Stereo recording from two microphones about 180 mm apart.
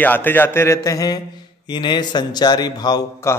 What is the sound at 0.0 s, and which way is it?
A man's voice, 10° left (ahead or behind).